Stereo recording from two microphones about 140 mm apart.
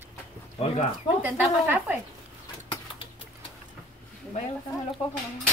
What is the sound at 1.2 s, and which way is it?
Speech, 15° right (ahead or behind).